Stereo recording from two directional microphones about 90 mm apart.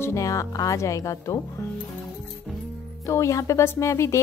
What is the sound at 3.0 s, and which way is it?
Speech, 35° left (ahead or behind).